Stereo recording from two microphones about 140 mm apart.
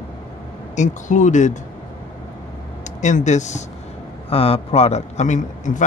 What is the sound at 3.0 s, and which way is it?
Speech, 55° left (ahead or behind).